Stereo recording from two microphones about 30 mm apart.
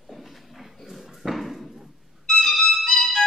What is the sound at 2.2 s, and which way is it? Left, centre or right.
Music, centre.